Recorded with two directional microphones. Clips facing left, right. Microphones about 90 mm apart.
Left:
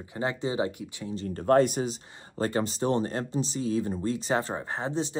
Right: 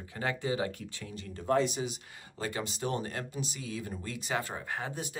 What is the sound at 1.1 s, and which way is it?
Speech, 40° left (ahead or behind).